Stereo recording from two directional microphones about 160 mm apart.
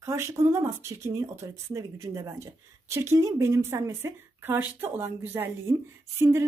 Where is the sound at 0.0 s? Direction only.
20° right (ahead or behind).